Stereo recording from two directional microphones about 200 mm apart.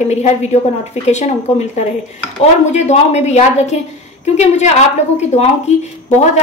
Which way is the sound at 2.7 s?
35° left (ahead or behind).